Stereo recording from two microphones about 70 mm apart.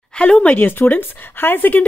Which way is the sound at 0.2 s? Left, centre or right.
Centre.